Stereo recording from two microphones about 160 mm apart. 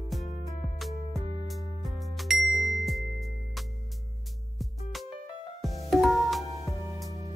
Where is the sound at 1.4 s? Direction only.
Centre (ahead or behind).